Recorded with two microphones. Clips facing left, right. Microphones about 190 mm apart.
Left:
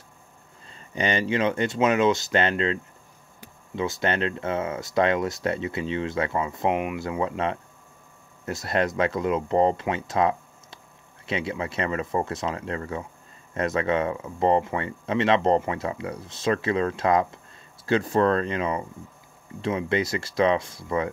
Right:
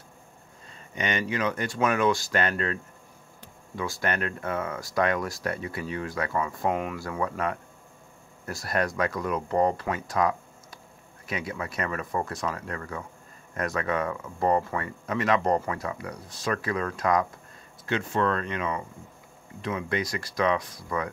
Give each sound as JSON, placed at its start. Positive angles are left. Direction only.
{"t": 0.7, "sound": "speech", "side_deg": 30}